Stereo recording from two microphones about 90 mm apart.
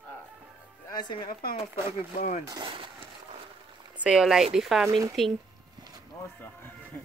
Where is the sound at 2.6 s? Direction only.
70° right (ahead or behind).